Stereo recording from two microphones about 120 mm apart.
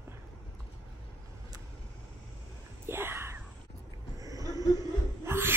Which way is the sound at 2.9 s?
20° right (ahead or behind).